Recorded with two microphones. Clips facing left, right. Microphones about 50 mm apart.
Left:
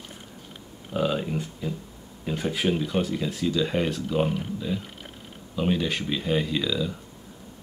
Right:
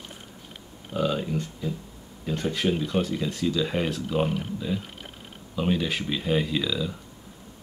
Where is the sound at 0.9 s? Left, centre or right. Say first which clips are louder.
Even; centre.